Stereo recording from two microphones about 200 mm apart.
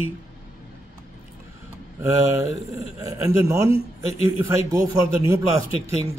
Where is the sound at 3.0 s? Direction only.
15° right (ahead or behind).